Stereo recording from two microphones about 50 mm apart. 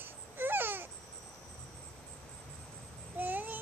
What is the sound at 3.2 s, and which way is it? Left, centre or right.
Babbling, right.